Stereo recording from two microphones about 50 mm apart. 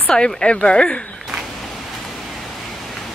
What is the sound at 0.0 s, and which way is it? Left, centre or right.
Speech, centre.